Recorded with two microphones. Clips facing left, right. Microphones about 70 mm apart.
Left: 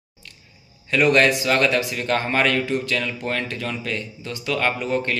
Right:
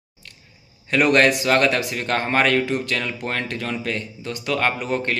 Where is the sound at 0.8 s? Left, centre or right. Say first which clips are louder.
Even; right.